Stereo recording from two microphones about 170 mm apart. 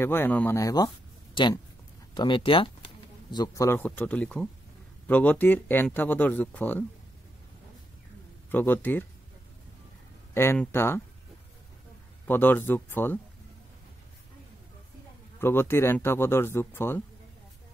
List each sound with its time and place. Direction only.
0.0 s speech: 15° left (ahead or behind)
8.5 s speech: 10° left (ahead or behind)
10.3 s speech: 15° left (ahead or behind)
12.3 s speech: 10° left (ahead or behind)
15.3 s speech: 15° left (ahead or behind)